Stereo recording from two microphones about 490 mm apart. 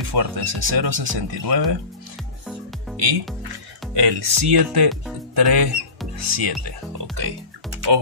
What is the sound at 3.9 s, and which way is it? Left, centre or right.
Speech, right.